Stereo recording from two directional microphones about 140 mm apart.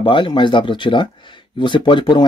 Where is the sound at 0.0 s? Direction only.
35° left (ahead or behind).